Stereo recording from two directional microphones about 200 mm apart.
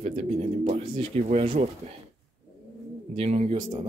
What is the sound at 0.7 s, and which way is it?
Speech, 30° right (ahead or behind).